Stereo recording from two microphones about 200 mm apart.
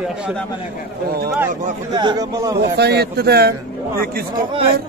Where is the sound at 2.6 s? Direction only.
55° right (ahead or behind).